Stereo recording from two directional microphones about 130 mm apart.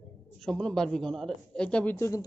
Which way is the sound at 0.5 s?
5° left (ahead or behind).